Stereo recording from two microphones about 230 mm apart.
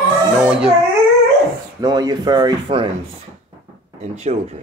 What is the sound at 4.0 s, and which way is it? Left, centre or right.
Speech, right.